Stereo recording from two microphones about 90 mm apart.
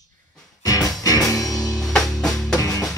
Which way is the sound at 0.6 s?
45° left (ahead or behind).